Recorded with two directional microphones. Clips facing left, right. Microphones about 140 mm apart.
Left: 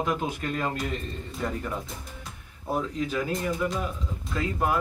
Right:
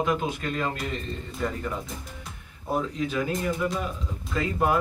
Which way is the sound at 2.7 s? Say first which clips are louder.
Right 1 dB; centre (ahead or behind).